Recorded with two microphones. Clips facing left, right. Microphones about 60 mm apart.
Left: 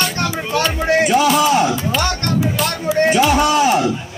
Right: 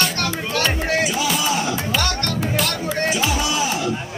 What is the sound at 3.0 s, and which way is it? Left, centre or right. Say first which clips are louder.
Speech: left 8 dB; left.